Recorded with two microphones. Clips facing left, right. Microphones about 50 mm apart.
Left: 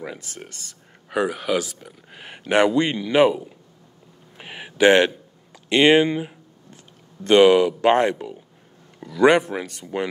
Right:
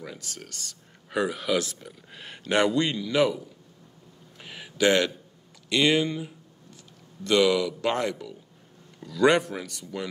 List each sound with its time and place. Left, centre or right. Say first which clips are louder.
0.0 s speech: left 5 dB; left
4.4 s a sound: left 7 dB; left
7.2 s speech: left 8 dB; left
9.0 s speech: left 5 dB; left